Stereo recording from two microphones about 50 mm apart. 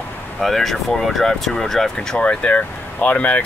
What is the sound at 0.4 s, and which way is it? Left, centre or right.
Speech, centre.